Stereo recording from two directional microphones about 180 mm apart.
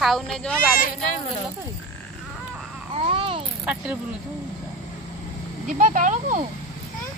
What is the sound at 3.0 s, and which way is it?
Speech, 30° right (ahead or behind).